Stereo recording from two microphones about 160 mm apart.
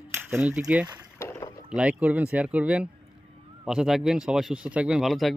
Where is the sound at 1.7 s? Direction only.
5° right (ahead or behind).